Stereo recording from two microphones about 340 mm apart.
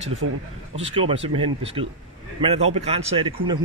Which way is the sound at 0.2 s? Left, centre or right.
Right.